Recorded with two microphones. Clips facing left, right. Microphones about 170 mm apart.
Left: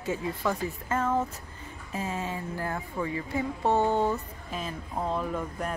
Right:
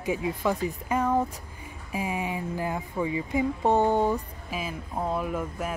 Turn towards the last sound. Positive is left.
turn(degrees=-5)  # may be behind; listen again after turning